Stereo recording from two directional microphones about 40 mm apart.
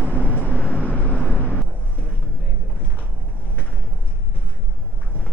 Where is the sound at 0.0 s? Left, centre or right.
Left.